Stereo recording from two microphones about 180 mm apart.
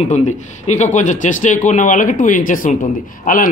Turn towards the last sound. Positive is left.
turn(degrees=50)  # may be behind; listen again after turning